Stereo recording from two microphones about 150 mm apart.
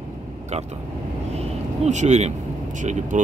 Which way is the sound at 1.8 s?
50° right (ahead or behind).